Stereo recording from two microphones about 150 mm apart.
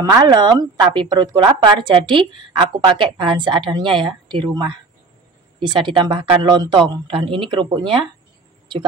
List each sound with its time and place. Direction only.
0.1 s speech: 30° right (ahead or behind)